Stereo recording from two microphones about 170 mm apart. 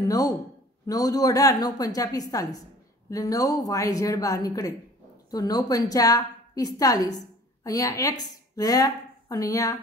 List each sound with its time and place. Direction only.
0.8 s a woman's voice: 20° left (ahead or behind)